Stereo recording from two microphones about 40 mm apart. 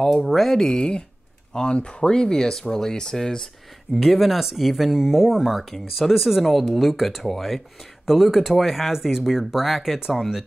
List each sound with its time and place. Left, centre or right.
0.0 s speech: centre
0.7 s speech: centre
3.9 s speech: centre